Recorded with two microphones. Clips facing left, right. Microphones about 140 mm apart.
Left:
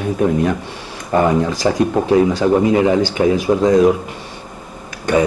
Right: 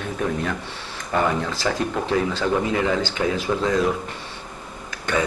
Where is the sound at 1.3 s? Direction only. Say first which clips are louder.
Left 8 dB; 15° left (ahead or behind).